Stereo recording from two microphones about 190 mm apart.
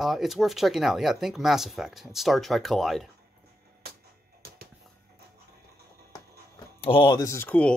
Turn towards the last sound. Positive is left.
turn(degrees=10)  # may be behind; listen again after turning